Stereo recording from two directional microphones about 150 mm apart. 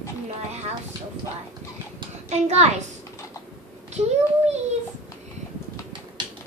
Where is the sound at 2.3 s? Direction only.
50° right (ahead or behind).